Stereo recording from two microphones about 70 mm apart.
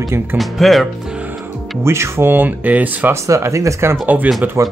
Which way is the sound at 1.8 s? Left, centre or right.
Right.